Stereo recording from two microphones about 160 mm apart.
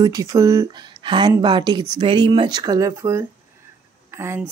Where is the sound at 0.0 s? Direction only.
20° right (ahead or behind).